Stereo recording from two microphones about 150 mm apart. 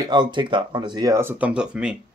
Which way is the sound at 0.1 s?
30° right (ahead or behind).